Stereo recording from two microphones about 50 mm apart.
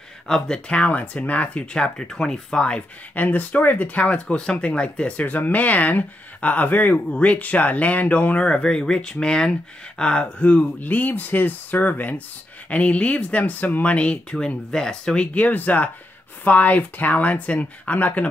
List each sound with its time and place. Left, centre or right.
0.3 s speech: centre
3.2 s speech: left; by 10.2 s centre
10.4 s speech: left
14.3 s speech: centre
15.3 s speech: left